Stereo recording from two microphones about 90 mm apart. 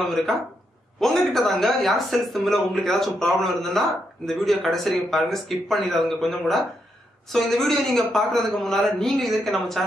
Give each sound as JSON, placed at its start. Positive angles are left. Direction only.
{"t": 0.0, "sound": "speech", "side_deg": 0}